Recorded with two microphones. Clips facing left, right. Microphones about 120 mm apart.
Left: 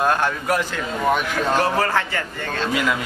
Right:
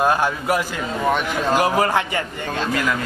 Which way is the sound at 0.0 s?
5° right (ahead or behind).